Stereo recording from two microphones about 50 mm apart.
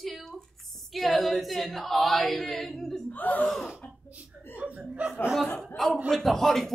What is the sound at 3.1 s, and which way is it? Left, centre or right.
Speech, left.